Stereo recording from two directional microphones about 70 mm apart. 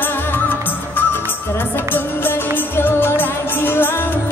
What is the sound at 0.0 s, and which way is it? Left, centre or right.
Music, left.